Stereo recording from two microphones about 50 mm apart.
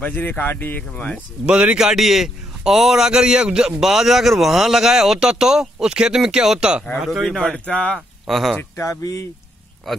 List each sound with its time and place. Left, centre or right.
0.0 s speech: left
1.4 s speech: centre
1.8 s a man's voice: centre
7.2 s speech: centre
7.5 s speech: left
8.3 s speech: centre
8.7 s speech: left
9.9 s speech: centre